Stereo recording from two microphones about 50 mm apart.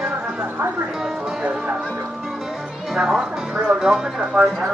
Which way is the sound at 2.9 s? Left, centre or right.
Centre.